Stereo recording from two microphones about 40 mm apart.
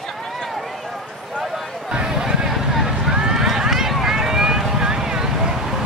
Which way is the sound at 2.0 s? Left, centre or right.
Centre.